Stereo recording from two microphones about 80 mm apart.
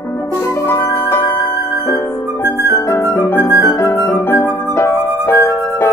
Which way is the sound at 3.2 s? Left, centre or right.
Left.